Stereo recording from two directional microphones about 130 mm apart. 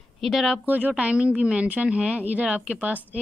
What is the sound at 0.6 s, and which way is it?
A woman's voice, 10° right (ahead or behind).